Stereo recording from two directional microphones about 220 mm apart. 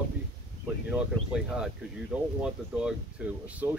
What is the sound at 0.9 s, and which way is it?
Speech, 5° right (ahead or behind).